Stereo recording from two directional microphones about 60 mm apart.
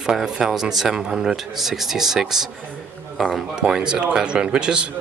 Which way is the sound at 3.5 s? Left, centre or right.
Centre.